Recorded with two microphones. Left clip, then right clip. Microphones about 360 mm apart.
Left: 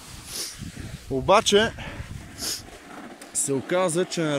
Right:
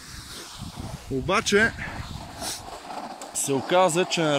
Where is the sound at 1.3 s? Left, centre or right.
Centre.